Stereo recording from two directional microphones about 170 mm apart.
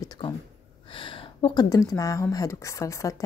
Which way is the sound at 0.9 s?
30° left (ahead or behind).